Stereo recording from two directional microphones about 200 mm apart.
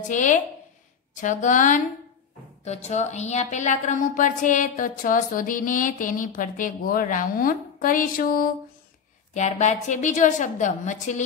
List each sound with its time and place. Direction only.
0.1 s a woman's voice: 40° left (ahead or behind)
9.3 s a woman's voice: 35° left (ahead or behind)